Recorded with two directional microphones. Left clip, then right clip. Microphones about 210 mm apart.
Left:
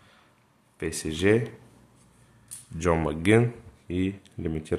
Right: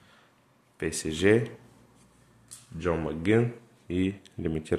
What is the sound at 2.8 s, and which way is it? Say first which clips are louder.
Speech: left 4 dB; 15° left (ahead or behind).